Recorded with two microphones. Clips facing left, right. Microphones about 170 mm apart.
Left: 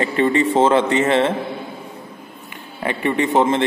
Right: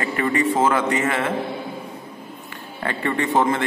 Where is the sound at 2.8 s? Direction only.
20° left (ahead or behind).